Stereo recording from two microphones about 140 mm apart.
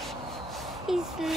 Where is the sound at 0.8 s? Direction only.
Centre (ahead or behind).